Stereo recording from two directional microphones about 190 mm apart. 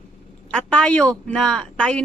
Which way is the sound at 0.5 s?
5° left (ahead or behind).